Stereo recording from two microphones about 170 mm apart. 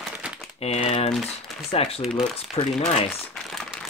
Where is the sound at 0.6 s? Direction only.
40° left (ahead or behind).